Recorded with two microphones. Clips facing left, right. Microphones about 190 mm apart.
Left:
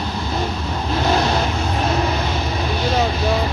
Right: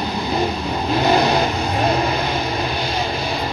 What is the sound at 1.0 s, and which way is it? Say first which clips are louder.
Vehicle: right 2 dB; 15° right (ahead or behind).